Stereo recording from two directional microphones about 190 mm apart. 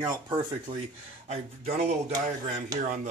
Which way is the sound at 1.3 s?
35° right (ahead or behind).